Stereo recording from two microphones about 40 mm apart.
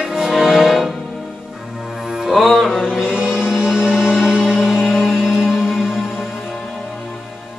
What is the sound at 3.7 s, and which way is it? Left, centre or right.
Music, centre.